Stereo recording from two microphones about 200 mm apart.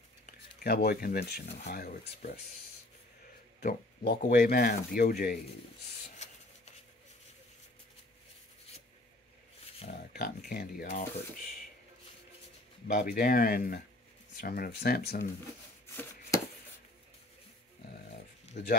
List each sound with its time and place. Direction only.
0.3 s speech: 50° left (ahead or behind)
3.6 s speech: 50° left (ahead or behind)
6.1 s rub: 35° left (ahead or behind)
10.1 s speech: 50° left (ahead or behind)
12.8 s speech: 50° left (ahead or behind)
18.6 s speech: 40° left (ahead or behind)